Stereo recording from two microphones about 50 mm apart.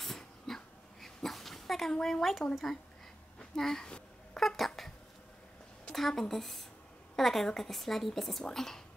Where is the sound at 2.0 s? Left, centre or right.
Centre.